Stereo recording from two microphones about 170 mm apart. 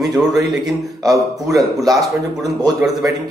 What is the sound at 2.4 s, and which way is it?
Speech, 20° right (ahead or behind).